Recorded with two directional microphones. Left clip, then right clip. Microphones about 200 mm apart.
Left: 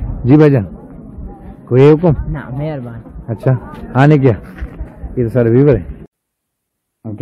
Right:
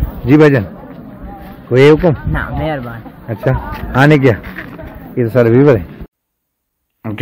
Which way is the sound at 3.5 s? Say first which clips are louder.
Right 2 dB; centre (ahead or behind).